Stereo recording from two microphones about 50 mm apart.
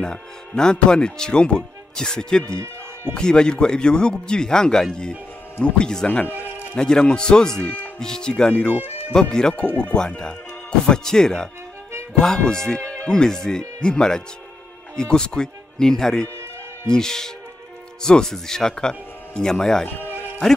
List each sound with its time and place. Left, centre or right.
0.0 s speech: centre
6.2 s music: left
6.8 s speech: centre
8.7 s speech: right
9.3 s speech: centre
12.8 s speech: left